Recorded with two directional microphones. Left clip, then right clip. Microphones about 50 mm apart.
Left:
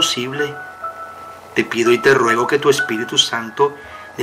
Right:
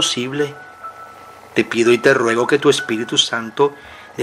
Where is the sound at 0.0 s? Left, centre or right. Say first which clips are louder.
Left 1 dB; right.